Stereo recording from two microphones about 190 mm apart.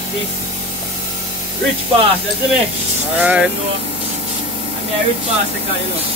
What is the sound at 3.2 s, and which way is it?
Speech, 5° right (ahead or behind).